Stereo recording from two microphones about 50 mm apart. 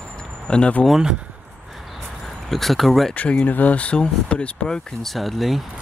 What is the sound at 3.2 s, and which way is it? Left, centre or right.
Speech, left.